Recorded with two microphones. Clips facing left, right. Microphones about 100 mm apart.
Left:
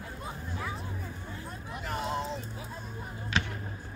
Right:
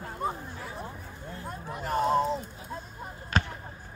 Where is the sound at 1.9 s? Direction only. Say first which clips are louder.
Right 8 dB; 40° right (ahead or behind).